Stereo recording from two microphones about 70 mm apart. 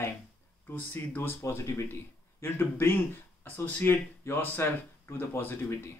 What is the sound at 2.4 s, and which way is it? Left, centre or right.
Speech, left.